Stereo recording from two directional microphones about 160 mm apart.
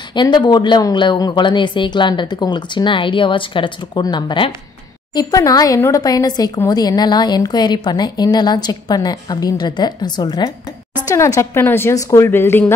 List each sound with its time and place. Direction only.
0.1 s a woman's voice: 25° left (ahead or behind)